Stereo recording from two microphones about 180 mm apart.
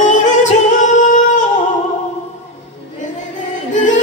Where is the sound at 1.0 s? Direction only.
45° left (ahead or behind).